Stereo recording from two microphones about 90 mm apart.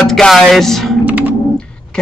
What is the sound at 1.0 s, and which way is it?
Computer keyboard, 20° right (ahead or behind).